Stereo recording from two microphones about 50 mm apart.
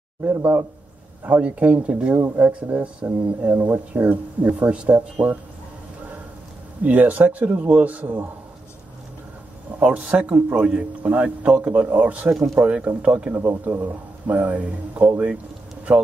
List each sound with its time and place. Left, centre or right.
0.3 s speech: right
2.1 s speech: right
6.8 s speech: right
9.8 s speech: right
13.3 s speech: right